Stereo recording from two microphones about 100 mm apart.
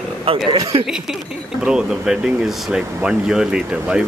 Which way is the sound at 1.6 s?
5° right (ahead or behind).